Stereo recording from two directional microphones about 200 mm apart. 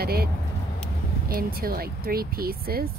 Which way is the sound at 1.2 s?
45° right (ahead or behind).